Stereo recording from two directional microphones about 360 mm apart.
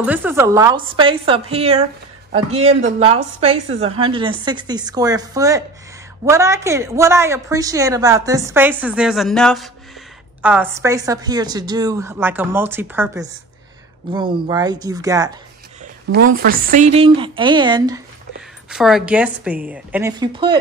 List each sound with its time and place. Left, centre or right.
0.0 s a woman's voice: centre
15.8 s a woman's voice: right